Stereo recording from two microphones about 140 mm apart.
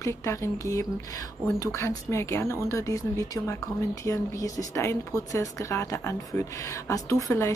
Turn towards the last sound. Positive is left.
turn(degrees=20)  # may be behind; listen again after turning